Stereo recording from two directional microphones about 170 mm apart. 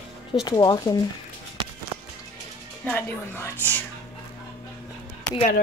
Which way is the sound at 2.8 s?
10° left (ahead or behind).